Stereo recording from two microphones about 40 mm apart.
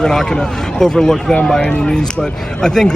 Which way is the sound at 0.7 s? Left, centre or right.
Centre.